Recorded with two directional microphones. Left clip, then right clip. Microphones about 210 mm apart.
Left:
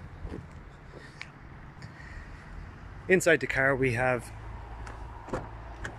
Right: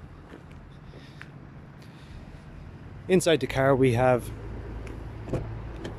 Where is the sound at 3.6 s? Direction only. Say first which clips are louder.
Right 4 dB; 15° right (ahead or behind).